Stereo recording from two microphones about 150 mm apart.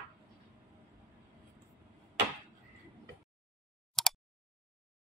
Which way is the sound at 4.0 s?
Centre (ahead or behind).